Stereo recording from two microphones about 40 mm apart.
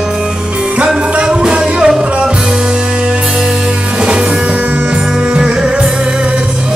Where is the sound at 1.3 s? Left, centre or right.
Right.